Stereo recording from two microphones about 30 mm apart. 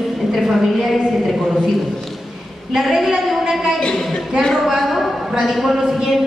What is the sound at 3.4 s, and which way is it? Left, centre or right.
Speech, centre.